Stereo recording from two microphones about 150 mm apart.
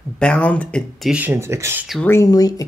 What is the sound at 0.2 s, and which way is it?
Speech, 10° left (ahead or behind).